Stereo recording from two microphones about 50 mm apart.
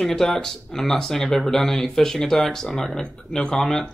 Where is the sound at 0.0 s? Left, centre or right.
Centre.